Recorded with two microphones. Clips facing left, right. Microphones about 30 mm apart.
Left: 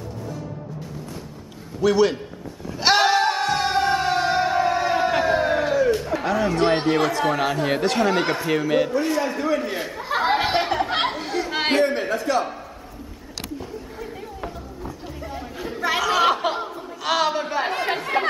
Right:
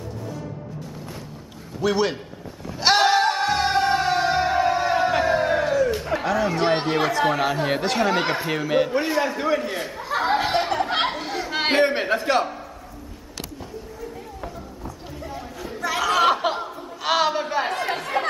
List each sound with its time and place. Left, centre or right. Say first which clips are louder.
1.8 s a sound: left 4 dB; centre
6.5 s speech: left 2 dB; centre
9.0 s a man's voice: even; centre
9.6 s speech: left 1 dB; centre
10.0 s chatter: left 1 dB; centre
11.8 s a man's voice: right 1 dB; right
14.4 s a sound: left 2 dB; centre
15.1 s chatter: even; centre
16.0 s chuckle: right 1 dB; centre
17.0 s a sound: right 1 dB; centre
17.9 s chatter: left 2 dB; centre